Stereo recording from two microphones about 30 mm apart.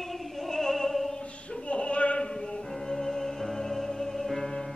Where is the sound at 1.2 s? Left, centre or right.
Left.